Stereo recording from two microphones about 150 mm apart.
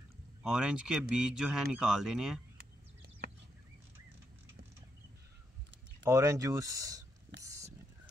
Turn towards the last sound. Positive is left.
turn(degrees=-25)  # may be behind; listen again after turning